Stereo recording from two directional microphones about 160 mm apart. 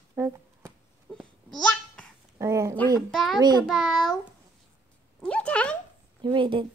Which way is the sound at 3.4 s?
25° right (ahead or behind).